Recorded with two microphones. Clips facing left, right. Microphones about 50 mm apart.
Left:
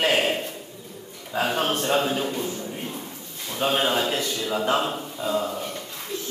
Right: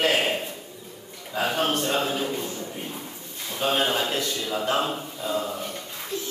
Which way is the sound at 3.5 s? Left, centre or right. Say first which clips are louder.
Left 1 dB; centre.